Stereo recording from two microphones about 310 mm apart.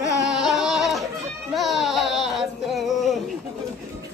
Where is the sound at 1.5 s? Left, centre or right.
Centre.